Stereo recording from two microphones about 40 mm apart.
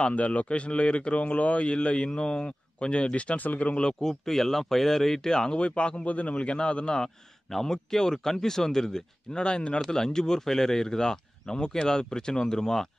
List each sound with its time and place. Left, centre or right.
0.0 s a man's voice: left
4.0 s speech: centre
5.6 s a man's voice: left
7.0 s speech: centre
9.3 s a man's voice: left
9.8 s speech: centre